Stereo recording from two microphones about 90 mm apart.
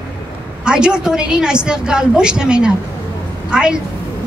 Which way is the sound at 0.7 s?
10° right (ahead or behind).